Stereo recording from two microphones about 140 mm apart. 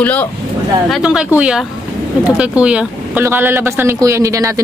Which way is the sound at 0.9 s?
5° right (ahead or behind).